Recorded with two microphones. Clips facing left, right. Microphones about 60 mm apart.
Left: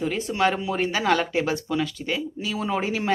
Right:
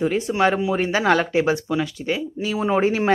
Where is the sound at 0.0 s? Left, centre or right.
Right.